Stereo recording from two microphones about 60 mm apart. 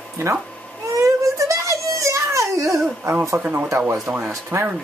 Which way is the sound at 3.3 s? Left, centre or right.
Right.